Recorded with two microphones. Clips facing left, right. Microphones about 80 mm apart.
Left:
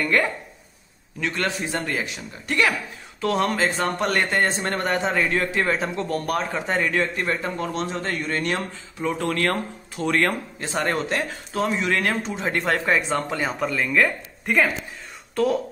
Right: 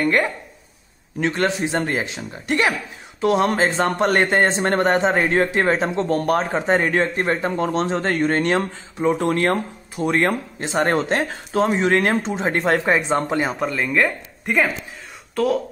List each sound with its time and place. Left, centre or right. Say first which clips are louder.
1.2 s speech: right 5 dB; right
8.9 s speech: right 6 dB; right; by 15.6 s centre